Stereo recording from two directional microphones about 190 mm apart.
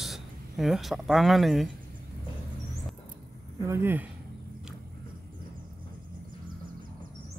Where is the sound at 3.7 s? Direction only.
10° right (ahead or behind).